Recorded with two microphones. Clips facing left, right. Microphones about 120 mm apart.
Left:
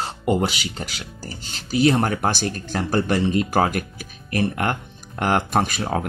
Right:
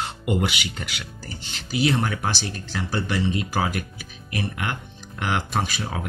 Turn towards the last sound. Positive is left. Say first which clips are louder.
# left 5 dB
turn(degrees=45)  # may be behind; listen again after turning